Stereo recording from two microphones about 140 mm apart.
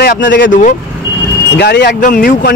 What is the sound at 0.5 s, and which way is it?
Speech, 70° left (ahead or behind).